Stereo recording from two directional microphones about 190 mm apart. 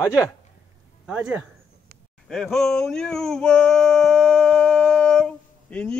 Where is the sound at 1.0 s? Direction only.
5° right (ahead or behind).